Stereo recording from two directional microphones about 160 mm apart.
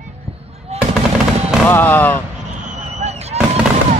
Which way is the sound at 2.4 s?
50° right (ahead or behind).